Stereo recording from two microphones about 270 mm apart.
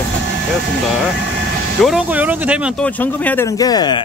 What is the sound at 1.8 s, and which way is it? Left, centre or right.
Speech, centre.